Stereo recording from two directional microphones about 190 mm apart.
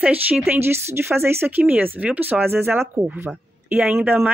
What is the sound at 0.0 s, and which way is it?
Speech, 10° right (ahead or behind).